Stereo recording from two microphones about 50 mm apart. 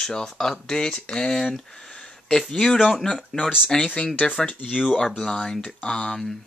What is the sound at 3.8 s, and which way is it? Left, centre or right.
Speech, left.